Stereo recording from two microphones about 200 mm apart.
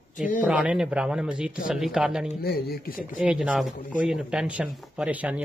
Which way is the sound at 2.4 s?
50° left (ahead or behind).